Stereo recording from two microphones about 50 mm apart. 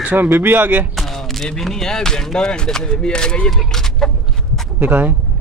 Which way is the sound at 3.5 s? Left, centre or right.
Centre.